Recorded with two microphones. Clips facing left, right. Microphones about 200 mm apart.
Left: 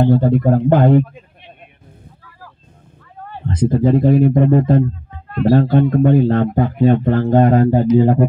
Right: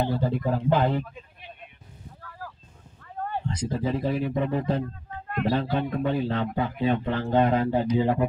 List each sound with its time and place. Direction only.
0.0 s speech: 55° left (ahead or behind)
3.4 s speech: 55° left (ahead or behind)